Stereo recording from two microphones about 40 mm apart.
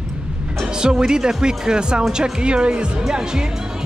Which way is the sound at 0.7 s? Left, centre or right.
Centre.